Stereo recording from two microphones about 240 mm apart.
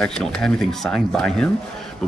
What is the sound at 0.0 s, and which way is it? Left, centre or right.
Speech, centre.